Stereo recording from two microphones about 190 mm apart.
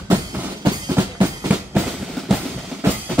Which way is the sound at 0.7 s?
20° right (ahead or behind).